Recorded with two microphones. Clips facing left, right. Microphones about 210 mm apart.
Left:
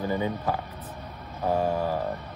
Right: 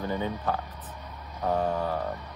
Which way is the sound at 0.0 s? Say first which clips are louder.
Left 2 dB; 15° left (ahead or behind).